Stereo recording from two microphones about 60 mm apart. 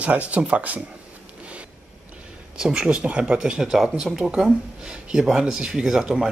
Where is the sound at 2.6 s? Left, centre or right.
Centre.